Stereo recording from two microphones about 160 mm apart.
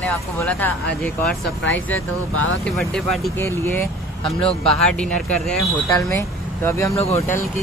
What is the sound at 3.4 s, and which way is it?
Speech, 15° left (ahead or behind).